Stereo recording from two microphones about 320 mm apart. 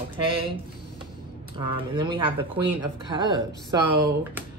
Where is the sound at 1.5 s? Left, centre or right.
Centre.